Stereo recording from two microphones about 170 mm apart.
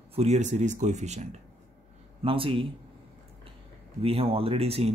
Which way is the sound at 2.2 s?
30° right (ahead or behind).